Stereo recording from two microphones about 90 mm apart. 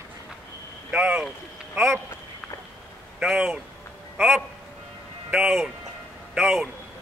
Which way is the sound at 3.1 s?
5° right (ahead or behind).